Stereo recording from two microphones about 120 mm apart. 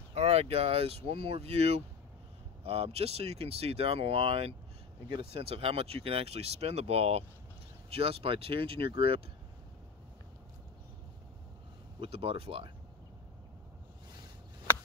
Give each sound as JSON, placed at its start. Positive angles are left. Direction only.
{"t": 0.1, "sound": "speech", "side_deg": -60}
{"t": 12.0, "sound": "speech", "side_deg": -50}